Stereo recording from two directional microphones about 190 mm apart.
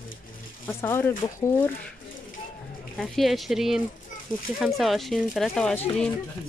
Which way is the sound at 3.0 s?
Centre (ahead or behind).